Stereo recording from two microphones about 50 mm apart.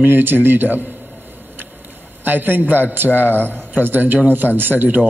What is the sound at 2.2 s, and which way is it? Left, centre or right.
A man's voice, right.